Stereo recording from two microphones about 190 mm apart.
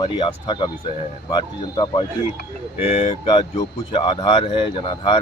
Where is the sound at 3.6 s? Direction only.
20° left (ahead or behind).